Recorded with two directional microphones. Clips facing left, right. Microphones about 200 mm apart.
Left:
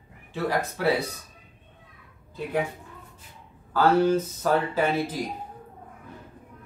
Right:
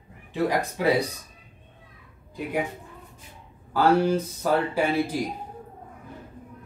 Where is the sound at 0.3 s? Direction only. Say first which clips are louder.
Right 2 dB; 15° right (ahead or behind).